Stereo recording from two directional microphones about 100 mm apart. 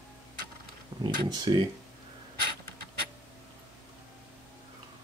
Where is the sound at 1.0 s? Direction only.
45° right (ahead or behind).